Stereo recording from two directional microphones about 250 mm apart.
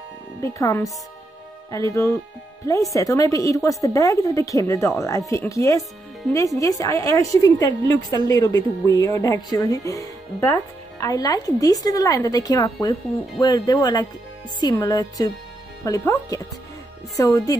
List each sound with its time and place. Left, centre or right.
0.4 s speech: centre